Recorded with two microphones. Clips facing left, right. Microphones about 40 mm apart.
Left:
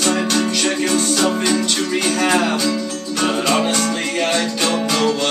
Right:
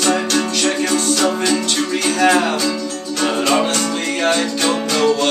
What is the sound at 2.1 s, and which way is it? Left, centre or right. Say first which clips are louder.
Music: right 3 dB; centre.